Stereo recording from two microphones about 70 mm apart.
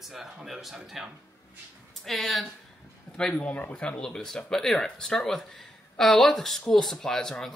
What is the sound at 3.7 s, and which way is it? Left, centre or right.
Speech, centre.